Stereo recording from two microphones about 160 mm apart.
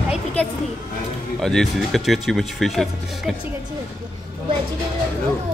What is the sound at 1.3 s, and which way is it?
Speech, centre (ahead or behind).